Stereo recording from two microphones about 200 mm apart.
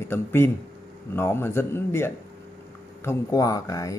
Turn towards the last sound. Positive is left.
turn(degrees=15)  # may be behind; listen again after turning